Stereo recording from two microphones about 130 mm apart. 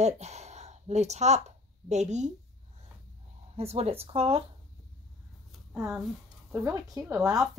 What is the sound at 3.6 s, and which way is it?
Speech, 50° right (ahead or behind).